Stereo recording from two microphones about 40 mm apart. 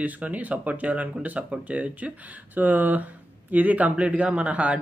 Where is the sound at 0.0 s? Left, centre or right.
Right.